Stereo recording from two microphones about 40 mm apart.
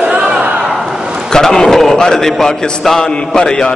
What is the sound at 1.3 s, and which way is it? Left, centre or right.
A man's voice, centre.